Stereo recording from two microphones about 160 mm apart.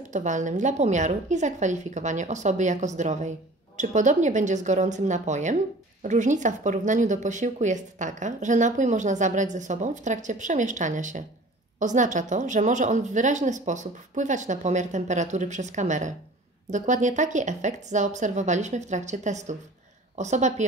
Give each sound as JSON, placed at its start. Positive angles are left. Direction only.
{"t": 0.1, "sound": "a woman's voice", "side_deg": -50}